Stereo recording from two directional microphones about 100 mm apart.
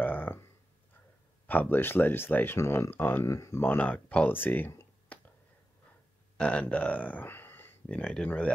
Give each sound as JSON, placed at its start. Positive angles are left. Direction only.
{"t": 0.0, "sound": "a sound", "side_deg": 20}
{"t": 1.5, "sound": "speech", "side_deg": 20}
{"t": 3.3, "sound": "speech", "side_deg": 30}
{"t": 3.6, "sound": "speech", "side_deg": 15}
{"t": 6.3, "sound": "speech", "side_deg": 10}